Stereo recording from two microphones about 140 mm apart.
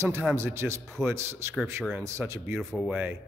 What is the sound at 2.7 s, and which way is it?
Speech, 5° right (ahead or behind).